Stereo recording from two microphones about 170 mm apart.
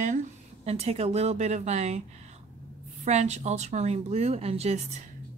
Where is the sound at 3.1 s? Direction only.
40° right (ahead or behind).